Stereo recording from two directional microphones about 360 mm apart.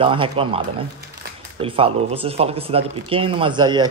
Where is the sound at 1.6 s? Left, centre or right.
Centre.